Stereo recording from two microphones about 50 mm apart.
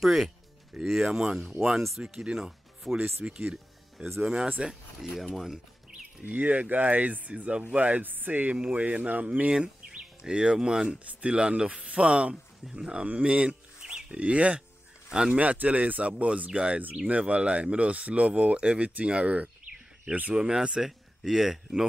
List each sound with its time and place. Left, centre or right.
0.0 s speech: centre
2.8 s speech: centre
3.2 s speech: right
6.2 s speech: right; by 15.3 s centre
15.3 s speech: right; by 21.8 s centre